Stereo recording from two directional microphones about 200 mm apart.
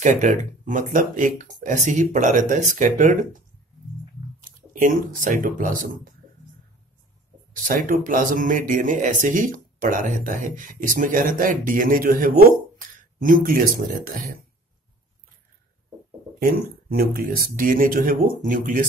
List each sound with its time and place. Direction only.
0.0 s speech: 40° right (ahead or behind)
7.5 s speech: 40° right (ahead or behind)
17.0 s speech: 45° right (ahead or behind)